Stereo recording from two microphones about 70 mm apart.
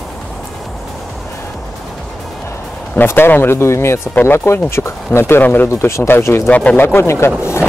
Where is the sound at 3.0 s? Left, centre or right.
Left.